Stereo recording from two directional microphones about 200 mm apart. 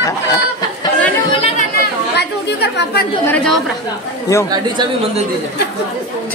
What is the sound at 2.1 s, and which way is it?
Chatter, 55° left (ahead or behind).